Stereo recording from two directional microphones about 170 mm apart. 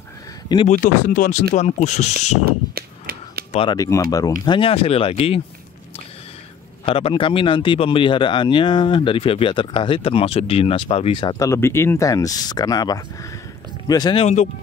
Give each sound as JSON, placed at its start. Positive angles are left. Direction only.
{"t": 0.7, "sound": "speech", "side_deg": 50}
{"t": 2.4, "sound": "a sound", "side_deg": -65}
{"t": 3.7, "sound": "speech", "side_deg": 20}
{"t": 6.9, "sound": "speech", "side_deg": 35}
{"t": 14.2, "sound": "speech", "side_deg": 45}